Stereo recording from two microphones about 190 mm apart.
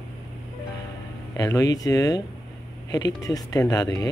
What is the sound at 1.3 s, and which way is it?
Speech, 20° left (ahead or behind).